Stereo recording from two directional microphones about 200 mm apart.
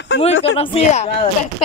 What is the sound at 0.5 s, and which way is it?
Speech, 30° left (ahead or behind).